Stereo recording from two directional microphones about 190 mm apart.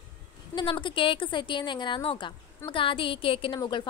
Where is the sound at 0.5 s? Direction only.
25° left (ahead or behind).